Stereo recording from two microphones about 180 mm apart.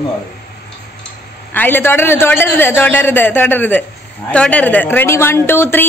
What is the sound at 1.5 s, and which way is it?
A man's voice, 10° left (ahead or behind).